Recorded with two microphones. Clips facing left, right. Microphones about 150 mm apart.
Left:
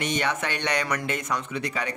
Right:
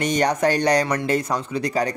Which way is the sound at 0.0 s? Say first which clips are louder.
Right 8 dB; 40° right (ahead or behind).